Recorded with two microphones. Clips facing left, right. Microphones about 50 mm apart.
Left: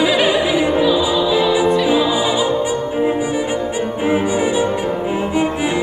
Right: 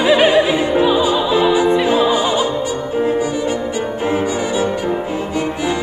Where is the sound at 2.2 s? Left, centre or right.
Centre.